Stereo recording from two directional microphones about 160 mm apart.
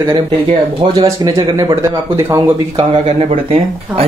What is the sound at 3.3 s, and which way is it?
Speech, 40° right (ahead or behind).